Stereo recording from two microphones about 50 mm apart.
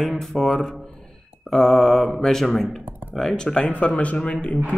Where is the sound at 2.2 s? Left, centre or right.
Centre.